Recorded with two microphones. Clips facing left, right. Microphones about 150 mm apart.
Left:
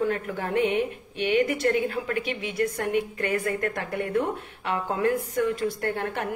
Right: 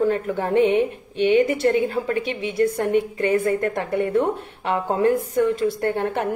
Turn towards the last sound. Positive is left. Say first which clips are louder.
# right 6 dB
turn(degrees=-30)  # may be behind; listen again after turning